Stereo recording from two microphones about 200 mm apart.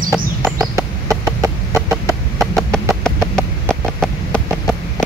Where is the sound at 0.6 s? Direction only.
15° right (ahead or behind).